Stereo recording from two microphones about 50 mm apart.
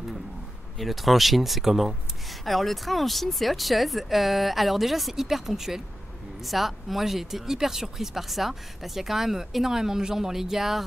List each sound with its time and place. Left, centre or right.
0.7 s speech: centre